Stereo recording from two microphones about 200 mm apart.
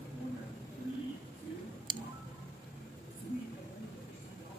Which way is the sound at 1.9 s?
25° right (ahead or behind).